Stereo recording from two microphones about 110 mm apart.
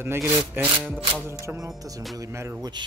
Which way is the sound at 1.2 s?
25° right (ahead or behind).